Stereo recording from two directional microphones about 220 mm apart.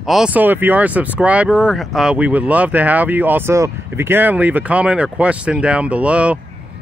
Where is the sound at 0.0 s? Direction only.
Centre (ahead or behind).